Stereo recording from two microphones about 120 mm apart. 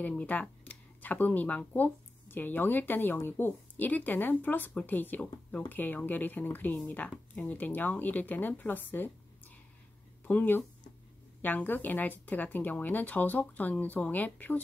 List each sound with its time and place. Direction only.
0.0 s speech: 10° left (ahead or behind)
10.2 s speech: 15° left (ahead or behind)